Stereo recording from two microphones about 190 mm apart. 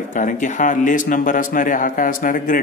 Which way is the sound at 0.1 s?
45° left (ahead or behind).